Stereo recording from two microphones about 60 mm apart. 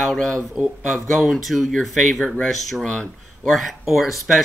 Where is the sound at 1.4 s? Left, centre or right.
Centre.